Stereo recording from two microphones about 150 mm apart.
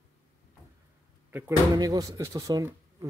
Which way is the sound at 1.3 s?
20° right (ahead or behind).